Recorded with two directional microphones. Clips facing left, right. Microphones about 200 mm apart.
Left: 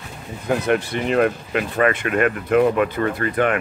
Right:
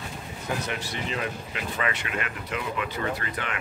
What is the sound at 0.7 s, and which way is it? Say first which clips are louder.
Speech: left 12 dB; 55° left (ahead or behind).